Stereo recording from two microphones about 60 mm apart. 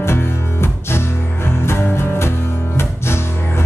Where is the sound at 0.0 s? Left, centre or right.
Left.